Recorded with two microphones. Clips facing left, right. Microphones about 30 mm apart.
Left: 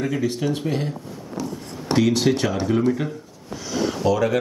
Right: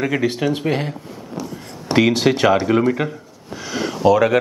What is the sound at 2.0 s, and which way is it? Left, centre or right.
Speech, right.